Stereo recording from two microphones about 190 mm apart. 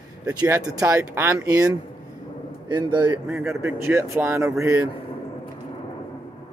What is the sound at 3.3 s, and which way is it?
Speech, 15° right (ahead or behind).